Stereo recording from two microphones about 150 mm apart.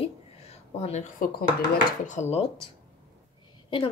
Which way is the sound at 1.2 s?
70° left (ahead or behind).